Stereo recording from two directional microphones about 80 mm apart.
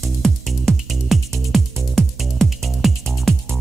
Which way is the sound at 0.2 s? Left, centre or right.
Centre.